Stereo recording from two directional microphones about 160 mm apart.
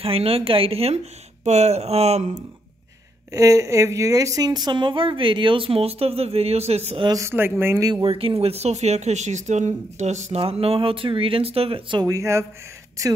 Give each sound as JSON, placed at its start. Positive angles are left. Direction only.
{"t": 0.0, "sound": "speech", "side_deg": -35}
{"t": 3.3, "sound": "speech", "side_deg": -20}
{"t": 7.1, "sound": "speech", "side_deg": -15}
{"t": 7.9, "sound": "speech", "side_deg": -35}